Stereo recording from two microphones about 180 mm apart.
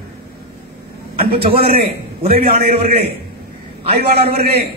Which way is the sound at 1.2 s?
35° right (ahead or behind).